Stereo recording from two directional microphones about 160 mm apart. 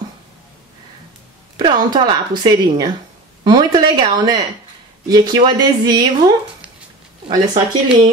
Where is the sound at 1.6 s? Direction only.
30° right (ahead or behind).